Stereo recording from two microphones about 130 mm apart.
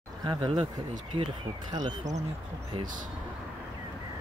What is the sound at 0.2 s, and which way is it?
Speech, 35° right (ahead or behind).